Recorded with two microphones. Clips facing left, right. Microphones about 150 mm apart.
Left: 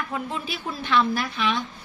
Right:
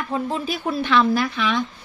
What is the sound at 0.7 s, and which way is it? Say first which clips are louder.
Speech: right 4 dB; 85° right.